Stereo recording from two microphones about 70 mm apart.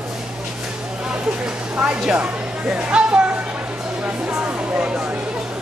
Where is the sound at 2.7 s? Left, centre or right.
Centre.